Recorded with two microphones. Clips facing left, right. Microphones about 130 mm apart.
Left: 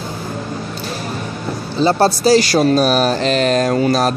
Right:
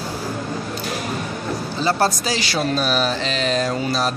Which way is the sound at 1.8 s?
30° left (ahead or behind).